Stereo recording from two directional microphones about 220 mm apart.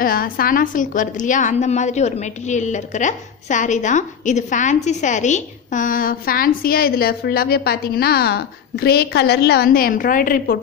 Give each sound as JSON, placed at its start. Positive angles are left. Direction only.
{"t": 0.0, "sound": "a woman's voice", "side_deg": 40}